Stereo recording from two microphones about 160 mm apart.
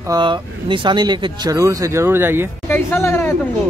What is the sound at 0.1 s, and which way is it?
Speech, 30° right (ahead or behind).